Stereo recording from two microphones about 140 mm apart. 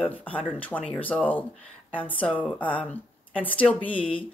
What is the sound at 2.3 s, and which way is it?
Speech, 5° left (ahead or behind).